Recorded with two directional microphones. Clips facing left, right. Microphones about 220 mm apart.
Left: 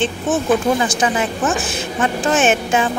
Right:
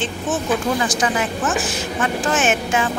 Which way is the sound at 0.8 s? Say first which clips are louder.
Left 2 dB; 25° left (ahead or behind).